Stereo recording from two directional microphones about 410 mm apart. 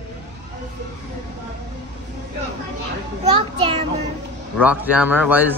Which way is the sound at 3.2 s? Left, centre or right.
Centre.